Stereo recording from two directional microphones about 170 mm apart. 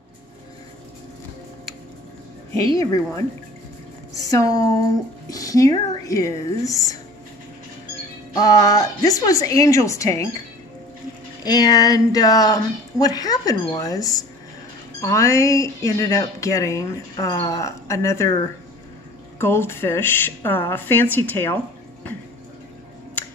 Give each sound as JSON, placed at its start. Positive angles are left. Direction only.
{"t": 2.8, "sound": "a woman's voice", "side_deg": 20}
{"t": 8.4, "sound": "speech", "side_deg": 20}
{"t": 11.4, "sound": "speech", "side_deg": 25}
{"t": 19.3, "sound": "speech", "side_deg": 15}